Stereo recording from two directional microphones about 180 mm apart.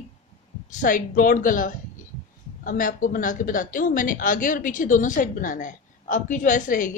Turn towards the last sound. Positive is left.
turn(degrees=45)  # may be behind; listen again after turning